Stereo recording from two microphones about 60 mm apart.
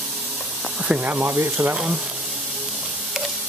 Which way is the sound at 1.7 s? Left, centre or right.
Centre.